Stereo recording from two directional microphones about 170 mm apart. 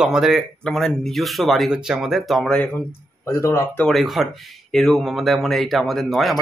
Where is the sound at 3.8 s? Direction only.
Centre (ahead or behind).